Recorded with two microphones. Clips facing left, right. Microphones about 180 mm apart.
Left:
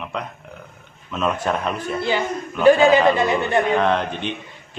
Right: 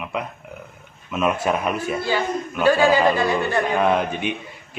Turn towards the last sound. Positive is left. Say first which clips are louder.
# right 1 dB
turn(degrees=-10)  # may be behind; listen again after turning